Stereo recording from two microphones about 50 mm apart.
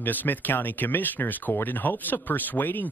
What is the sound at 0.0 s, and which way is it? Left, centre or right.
Speech, left.